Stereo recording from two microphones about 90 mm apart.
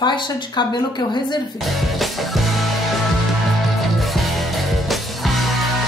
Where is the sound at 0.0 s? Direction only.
60° left (ahead or behind).